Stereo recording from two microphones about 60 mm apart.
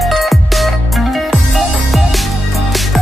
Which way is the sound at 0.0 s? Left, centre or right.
Centre.